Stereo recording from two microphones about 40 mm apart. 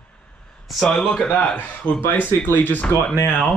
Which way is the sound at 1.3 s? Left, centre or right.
Left.